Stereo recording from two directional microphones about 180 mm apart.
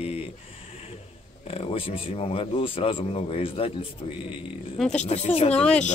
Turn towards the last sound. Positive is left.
turn(degrees=5)  # may be behind; listen again after turning